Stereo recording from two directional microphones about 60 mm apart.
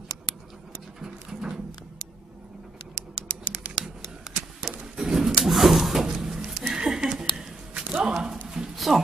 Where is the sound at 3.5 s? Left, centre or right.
Centre.